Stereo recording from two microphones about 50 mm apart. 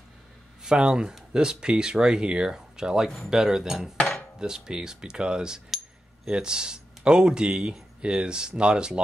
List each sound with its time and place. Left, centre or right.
0.6 s speech: centre